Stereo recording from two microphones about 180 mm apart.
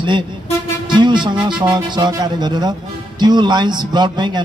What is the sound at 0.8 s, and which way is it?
Music, 25° right (ahead or behind).